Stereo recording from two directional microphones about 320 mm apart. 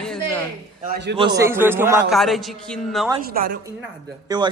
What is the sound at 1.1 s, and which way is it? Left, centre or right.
A man's voice, centre.